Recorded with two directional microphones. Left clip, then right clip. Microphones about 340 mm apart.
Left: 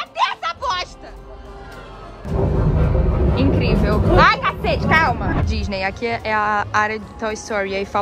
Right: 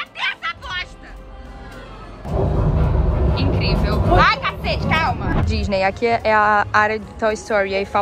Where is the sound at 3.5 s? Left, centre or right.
Centre.